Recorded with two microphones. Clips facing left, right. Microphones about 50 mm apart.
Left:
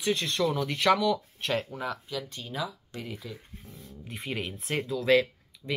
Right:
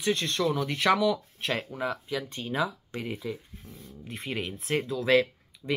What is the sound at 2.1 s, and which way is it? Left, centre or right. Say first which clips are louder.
Speech: right 4 dB; right.